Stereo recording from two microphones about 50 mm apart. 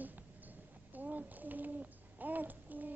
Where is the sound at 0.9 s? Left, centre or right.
Right.